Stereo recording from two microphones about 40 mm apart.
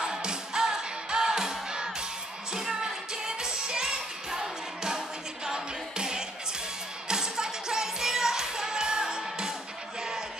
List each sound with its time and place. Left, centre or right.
0.0 s music: centre